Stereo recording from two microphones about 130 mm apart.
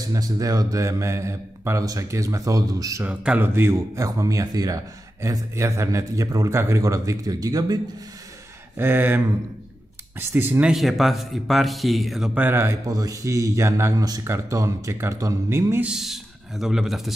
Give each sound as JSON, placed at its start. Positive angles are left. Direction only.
{"t": 0.0, "sound": "speech", "side_deg": -30}
{"t": 3.0, "sound": "speech", "side_deg": -10}
{"t": 8.7, "sound": "speech", "side_deg": -15}
{"t": 10.7, "sound": "speech", "side_deg": 0}
{"t": 12.4, "sound": "speech", "side_deg": -15}
{"t": 15.9, "sound": "a man's voice", "side_deg": 0}